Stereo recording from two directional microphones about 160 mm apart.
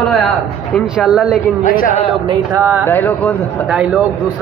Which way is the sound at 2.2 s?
30° right (ahead or behind).